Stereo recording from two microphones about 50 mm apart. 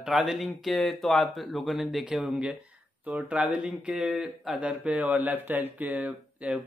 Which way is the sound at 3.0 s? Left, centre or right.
Right.